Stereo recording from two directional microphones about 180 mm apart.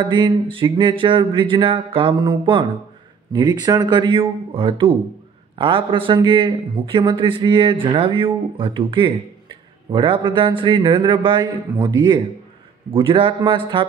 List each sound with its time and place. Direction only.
0.0 s a man's voice: 25° right (ahead or behind)